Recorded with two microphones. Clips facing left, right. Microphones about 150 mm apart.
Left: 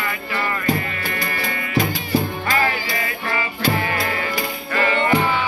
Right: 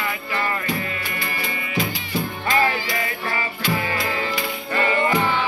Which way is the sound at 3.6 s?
35° left (ahead or behind).